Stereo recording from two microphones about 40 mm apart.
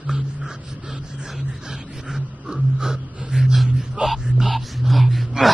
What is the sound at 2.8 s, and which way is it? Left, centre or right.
Music, centre.